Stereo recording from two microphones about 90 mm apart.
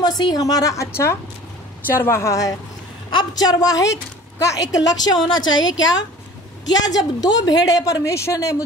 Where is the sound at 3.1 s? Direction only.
50° left (ahead or behind).